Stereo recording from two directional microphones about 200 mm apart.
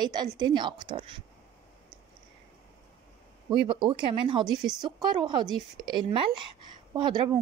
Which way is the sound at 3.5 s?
25° right (ahead or behind).